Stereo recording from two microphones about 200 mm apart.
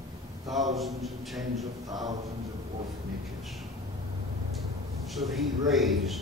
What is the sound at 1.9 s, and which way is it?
Speech, 20° right (ahead or behind).